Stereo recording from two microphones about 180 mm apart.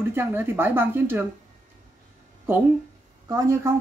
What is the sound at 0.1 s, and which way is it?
Speech, 10° right (ahead or behind).